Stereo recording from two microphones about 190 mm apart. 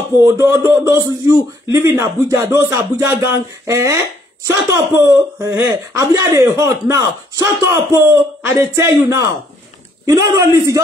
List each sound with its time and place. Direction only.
0.2 s speech: 15° right (ahead or behind)